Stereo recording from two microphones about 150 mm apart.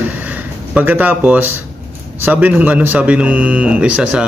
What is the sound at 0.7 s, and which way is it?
Speech, 10° right (ahead or behind).